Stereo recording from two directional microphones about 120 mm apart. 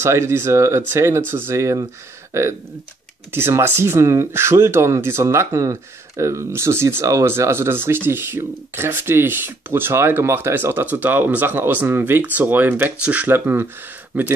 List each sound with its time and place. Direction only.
0.0 s speech: 20° right (ahead or behind)